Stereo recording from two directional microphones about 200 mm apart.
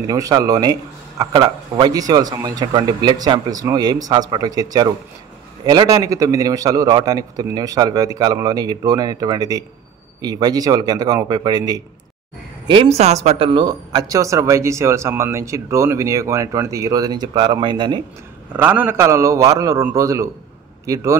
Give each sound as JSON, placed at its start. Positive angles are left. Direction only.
{"t": 0.0, "sound": "a man's voice", "side_deg": -15}
{"t": 18.6, "sound": "speech", "side_deg": -10}